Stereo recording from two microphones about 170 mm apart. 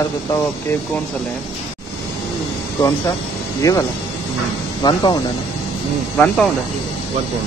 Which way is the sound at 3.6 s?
20° left (ahead or behind).